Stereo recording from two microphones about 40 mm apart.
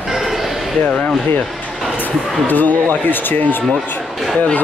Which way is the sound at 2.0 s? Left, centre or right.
Left.